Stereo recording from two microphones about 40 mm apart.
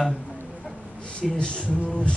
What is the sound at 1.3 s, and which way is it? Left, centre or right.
Speech, left.